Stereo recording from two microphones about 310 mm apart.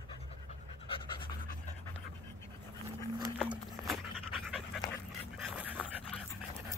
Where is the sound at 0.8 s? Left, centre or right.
Centre.